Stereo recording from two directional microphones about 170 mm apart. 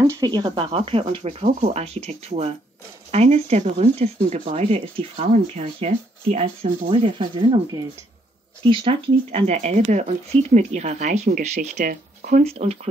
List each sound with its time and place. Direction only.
0.0 s speech: 20° right (ahead or behind)
8.6 s speech: 30° right (ahead or behind)